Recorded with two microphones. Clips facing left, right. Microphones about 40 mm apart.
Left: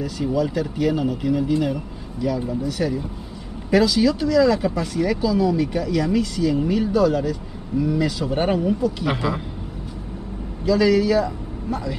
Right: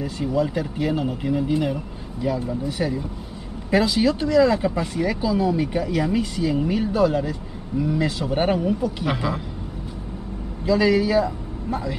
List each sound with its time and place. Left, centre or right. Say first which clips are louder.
0.2 s speech: left 1 dB; centre
2.8 s speech: left 1 dB; centre
3.7 s speech: left 2 dB; centre
10.6 s a man's voice: left 1 dB; centre